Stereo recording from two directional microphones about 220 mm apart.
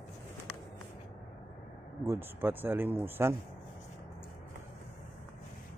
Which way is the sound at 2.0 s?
10° right (ahead or behind).